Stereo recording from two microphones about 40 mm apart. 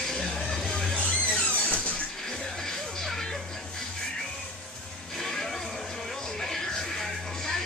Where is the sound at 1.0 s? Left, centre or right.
Left.